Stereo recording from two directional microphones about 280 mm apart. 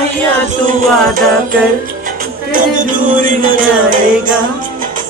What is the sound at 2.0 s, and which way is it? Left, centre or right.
Music, right.